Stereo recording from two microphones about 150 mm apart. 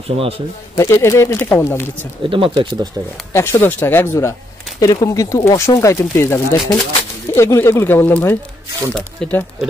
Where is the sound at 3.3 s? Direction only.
15° left (ahead or behind).